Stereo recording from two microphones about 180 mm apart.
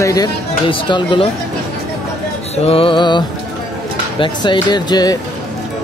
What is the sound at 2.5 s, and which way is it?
Speech, 35° left (ahead or behind).